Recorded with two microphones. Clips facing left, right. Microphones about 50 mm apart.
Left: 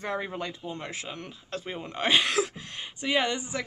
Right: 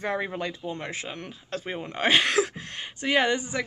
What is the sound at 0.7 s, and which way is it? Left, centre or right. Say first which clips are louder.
Speech: right 2 dB; right.